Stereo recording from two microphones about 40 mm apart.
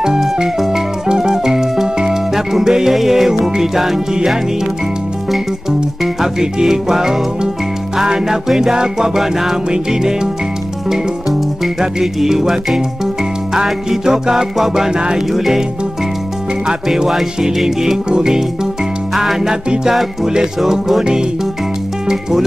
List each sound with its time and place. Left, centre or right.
0.0 s music: centre
6.4 s music: centre
12.0 s music: centre
15.3 s music: centre
16.6 s music: centre
19.4 s music: centre